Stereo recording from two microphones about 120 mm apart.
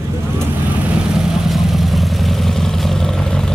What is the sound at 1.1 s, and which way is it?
Vehicle, centre (ahead or behind).